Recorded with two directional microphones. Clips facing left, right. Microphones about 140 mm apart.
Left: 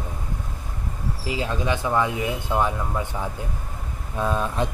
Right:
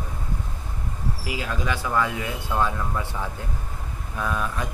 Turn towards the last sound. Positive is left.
turn(degrees=25)  # may be behind; listen again after turning